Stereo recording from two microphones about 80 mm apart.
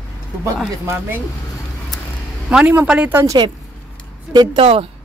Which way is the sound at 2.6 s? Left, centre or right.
Right.